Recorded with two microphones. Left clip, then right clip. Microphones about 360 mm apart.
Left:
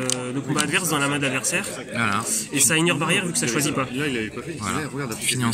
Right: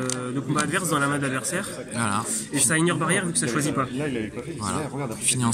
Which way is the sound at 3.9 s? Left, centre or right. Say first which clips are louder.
Left 3 dB; centre.